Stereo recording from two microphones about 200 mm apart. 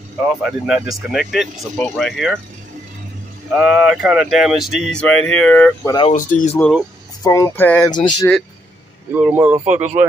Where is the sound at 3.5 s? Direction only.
5° right (ahead or behind).